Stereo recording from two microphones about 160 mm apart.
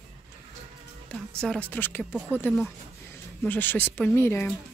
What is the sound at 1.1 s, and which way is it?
Speech, 5° left (ahead or behind).